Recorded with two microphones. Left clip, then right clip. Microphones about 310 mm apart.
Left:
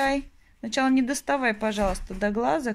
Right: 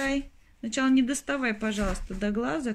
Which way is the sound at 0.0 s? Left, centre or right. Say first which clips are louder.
Left 5 dB; centre.